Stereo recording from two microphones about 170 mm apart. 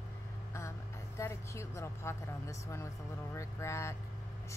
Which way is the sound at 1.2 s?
15° left (ahead or behind).